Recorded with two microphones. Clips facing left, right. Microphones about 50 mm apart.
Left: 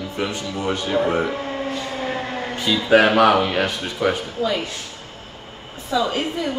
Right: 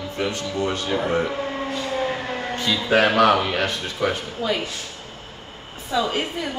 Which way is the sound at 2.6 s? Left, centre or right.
Centre.